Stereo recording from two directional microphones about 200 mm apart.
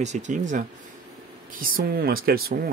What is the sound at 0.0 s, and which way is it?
Speech, 35° right (ahead or behind).